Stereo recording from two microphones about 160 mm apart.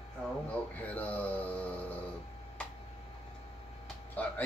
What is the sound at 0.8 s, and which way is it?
Mantra, 10° left (ahead or behind).